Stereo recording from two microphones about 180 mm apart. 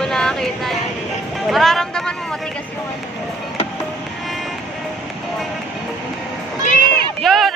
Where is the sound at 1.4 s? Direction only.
Centre (ahead or behind).